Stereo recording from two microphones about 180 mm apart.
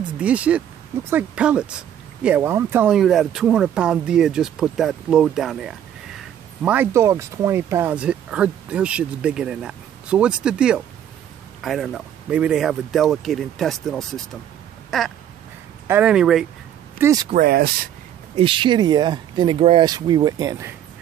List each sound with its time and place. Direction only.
0.2 s speech: 5° right (ahead or behind)
14.9 s quack: centre (ahead or behind)
15.9 s speech: 5° right (ahead or behind)
17.0 s speech: 20° right (ahead or behind)
17.4 s speech: 60° right (ahead or behind)
18.3 s speech: 30° right (ahead or behind)